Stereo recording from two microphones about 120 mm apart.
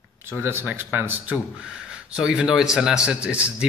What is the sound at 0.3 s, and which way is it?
Speech, 20° right (ahead or behind).